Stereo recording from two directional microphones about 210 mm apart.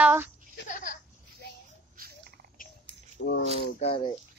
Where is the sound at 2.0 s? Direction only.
45° right (ahead or behind).